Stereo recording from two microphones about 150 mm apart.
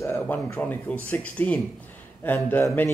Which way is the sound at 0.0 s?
15° left (ahead or behind).